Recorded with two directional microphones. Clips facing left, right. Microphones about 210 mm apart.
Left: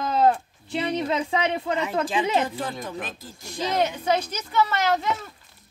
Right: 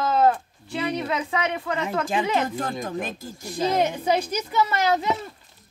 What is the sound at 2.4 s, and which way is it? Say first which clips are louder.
Speech: right 2 dB; 45° right (ahead or behind).